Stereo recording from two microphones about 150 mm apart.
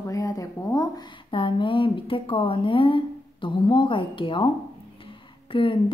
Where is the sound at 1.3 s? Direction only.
35° left (ahead or behind).